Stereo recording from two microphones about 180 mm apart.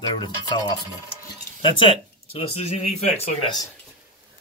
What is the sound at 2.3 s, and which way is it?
Speech, 35° left (ahead or behind).